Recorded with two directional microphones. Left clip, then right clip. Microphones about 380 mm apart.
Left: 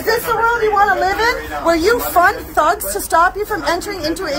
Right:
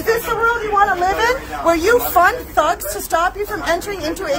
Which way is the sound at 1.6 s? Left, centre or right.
Centre.